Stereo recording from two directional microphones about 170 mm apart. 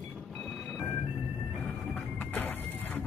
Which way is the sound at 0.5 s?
Centre (ahead or behind).